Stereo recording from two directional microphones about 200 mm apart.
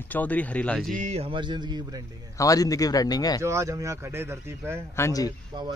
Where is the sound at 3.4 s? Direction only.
15° right (ahead or behind).